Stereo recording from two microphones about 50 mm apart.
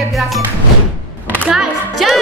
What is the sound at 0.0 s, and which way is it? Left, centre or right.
Music, centre.